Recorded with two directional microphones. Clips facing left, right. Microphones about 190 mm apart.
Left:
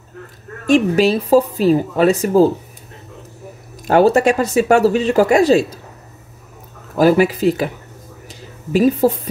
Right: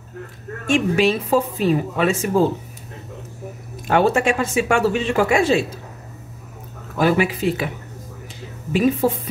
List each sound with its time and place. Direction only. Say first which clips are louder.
0.7 s speech: left 4 dB; 40° left (ahead or behind)
3.8 s speech: left 5 dB; 40° left (ahead or behind)
7.0 s speech: left 6 dB; 40° left (ahead or behind)
8.7 s speech: left 4 dB; 40° left (ahead or behind)